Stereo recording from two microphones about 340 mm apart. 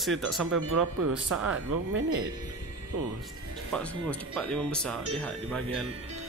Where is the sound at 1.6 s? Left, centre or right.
Right.